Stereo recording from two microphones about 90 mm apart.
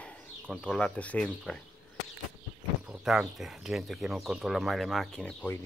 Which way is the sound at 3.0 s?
5° right (ahead or behind).